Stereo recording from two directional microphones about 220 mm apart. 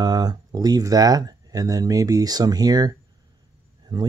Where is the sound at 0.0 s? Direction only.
20° right (ahead or behind).